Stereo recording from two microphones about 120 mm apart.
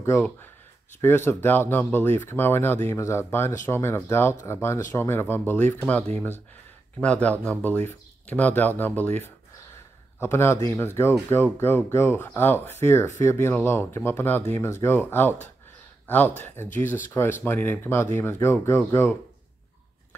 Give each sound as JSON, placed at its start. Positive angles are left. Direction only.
{"t": 0.0, "sound": "speech", "side_deg": 20}